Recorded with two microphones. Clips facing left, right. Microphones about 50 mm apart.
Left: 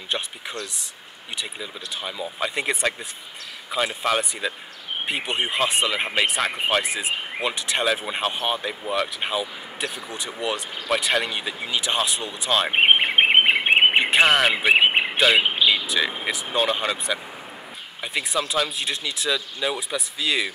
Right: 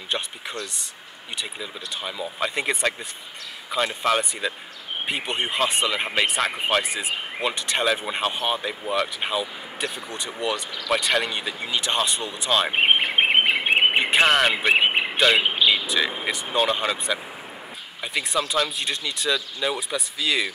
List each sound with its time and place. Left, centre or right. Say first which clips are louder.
0.1 s speech: even; centre
1.4 s speech: even; centre
13.2 s bird vocalization: left 2 dB; centre
13.9 s speech: left 1 dB; centre